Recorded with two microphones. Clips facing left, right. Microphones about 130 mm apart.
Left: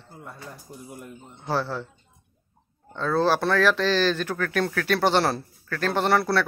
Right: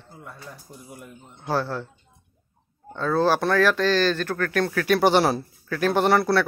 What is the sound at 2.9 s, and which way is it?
Speech, centre (ahead or behind).